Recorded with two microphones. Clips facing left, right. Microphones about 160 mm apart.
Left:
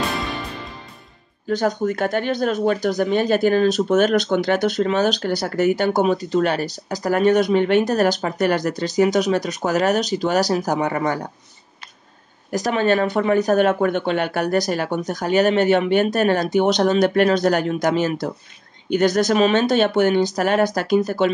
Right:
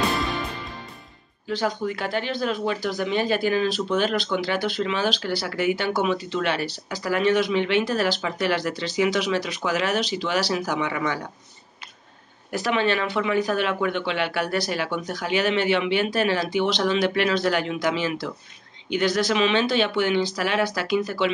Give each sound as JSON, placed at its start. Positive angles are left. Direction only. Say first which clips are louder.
{"t": 1.5, "sound": "speech", "louder": "left 5 dB", "side_deg": 45}
{"t": 12.4, "sound": "speech", "louder": "left 4 dB", "side_deg": 40}